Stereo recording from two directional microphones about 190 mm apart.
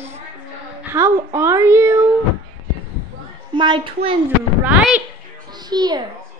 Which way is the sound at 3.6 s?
25° right (ahead or behind).